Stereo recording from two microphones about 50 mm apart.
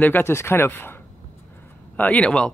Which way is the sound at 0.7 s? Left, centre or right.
Left.